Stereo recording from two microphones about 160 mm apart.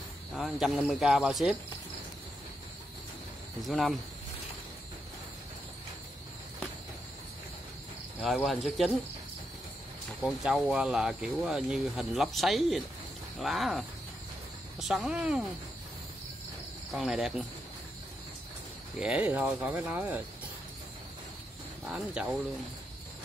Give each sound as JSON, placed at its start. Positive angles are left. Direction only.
{"t": 0.4, "sound": "speech", "side_deg": -5}
{"t": 3.6, "sound": "speech", "side_deg": 0}
{"t": 8.2, "sound": "speech", "side_deg": 0}
{"t": 10.2, "sound": "speech", "side_deg": 0}
{"t": 16.9, "sound": "speech", "side_deg": -5}
{"t": 18.9, "sound": "speech", "side_deg": -5}
{"t": 21.8, "sound": "speech", "side_deg": -5}